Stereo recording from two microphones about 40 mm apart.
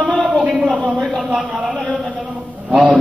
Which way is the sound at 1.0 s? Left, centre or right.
Centre.